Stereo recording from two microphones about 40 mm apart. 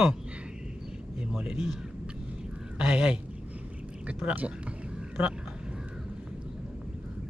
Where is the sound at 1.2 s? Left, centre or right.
Right.